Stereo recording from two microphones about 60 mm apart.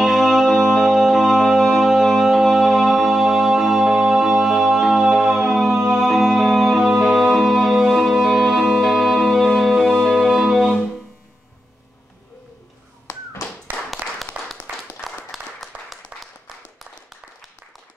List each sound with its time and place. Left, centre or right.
0.0 s music: centre
14.3 s a sound: right
15.0 s clapping: centre